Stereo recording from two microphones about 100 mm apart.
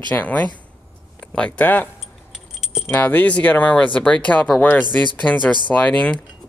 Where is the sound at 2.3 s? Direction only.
5° right (ahead or behind).